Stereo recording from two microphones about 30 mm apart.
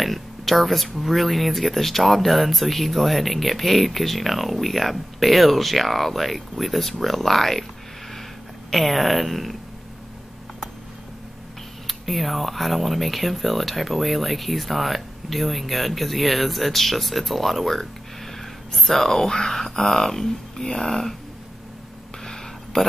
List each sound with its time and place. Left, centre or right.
0.0 s speech: centre
8.6 s speech: centre
11.9 s speech: centre
19.1 s speech: left
22.2 s a sound: left